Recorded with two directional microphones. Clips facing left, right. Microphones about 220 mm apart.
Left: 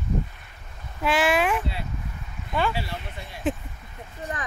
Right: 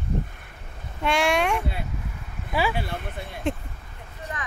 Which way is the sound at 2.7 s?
50° right (ahead or behind).